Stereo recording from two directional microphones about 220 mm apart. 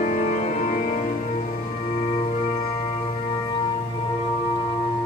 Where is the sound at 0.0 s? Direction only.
30° left (ahead or behind).